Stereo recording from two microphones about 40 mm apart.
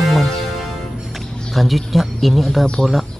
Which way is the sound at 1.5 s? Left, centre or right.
Centre.